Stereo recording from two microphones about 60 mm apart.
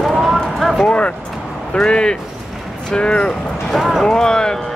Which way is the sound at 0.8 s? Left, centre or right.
Centre.